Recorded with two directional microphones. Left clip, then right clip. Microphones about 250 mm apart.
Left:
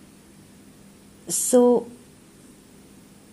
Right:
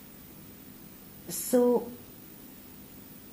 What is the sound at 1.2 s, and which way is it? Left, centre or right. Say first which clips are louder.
Speech: left 8 dB; left.